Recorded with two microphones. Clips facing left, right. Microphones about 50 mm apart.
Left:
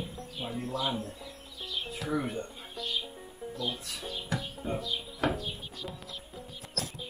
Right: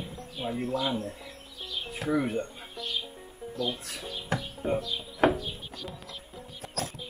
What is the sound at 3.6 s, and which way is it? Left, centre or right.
Speech, right.